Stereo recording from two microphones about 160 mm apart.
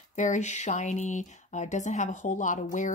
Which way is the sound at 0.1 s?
50° left (ahead or behind).